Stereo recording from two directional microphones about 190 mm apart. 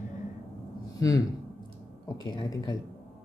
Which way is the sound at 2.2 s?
25° left (ahead or behind).